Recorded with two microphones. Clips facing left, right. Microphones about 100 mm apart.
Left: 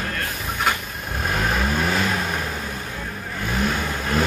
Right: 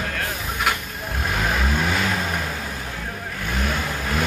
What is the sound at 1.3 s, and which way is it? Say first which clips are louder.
Vehicle: left 1 dB; centre (ahead or behind).